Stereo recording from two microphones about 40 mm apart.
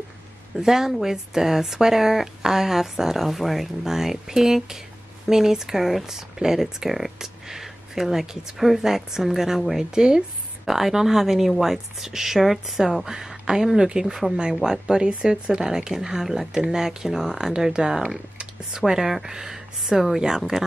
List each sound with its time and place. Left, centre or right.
0.6 s a woman's voice: centre
20.2 s a woman's voice: centre